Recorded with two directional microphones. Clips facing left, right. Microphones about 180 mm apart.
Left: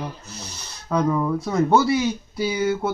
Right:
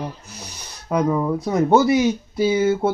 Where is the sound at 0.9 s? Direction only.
20° right (ahead or behind).